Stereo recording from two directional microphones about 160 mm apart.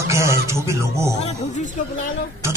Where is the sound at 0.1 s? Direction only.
20° right (ahead or behind).